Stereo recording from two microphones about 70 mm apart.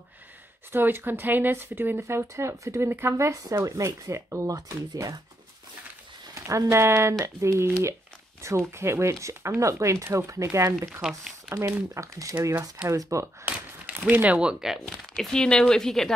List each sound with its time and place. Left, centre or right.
0.7 s speech: right
3.4 s speech: right
6.3 s speech: right
10.9 s speech: centre
11.5 s speech: right
13.5 s speech: right
14.9 s speech: centre